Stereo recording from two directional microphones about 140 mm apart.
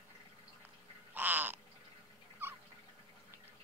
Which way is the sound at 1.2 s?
10° right (ahead or behind).